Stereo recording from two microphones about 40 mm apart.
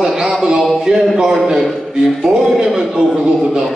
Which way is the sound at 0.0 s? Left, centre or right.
Centre.